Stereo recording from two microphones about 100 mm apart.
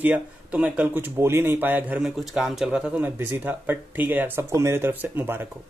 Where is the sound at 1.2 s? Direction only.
25° right (ahead or behind).